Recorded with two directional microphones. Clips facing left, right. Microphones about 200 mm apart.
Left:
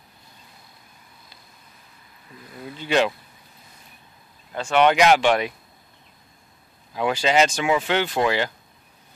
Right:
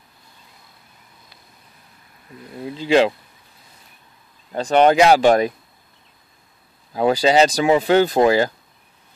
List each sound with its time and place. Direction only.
2.9 s speech: 30° right (ahead or behind)
4.5 s speech: 35° right (ahead or behind)
6.9 s speech: 35° right (ahead or behind)